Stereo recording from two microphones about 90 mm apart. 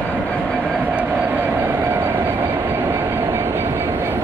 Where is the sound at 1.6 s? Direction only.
20° right (ahead or behind).